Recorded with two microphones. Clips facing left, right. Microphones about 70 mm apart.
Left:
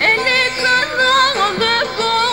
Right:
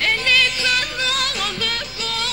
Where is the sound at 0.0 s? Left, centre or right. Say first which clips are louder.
Left 4 dB; left.